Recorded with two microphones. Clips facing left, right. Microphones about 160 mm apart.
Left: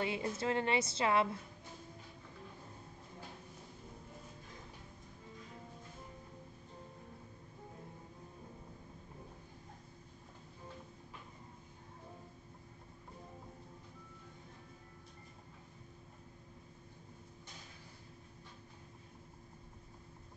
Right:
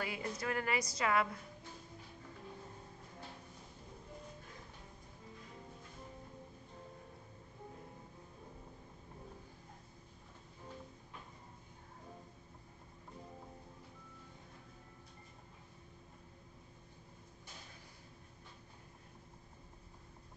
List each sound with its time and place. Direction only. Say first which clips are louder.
0.0 s a woman's voice: left 4 dB; 25° left (ahead or behind)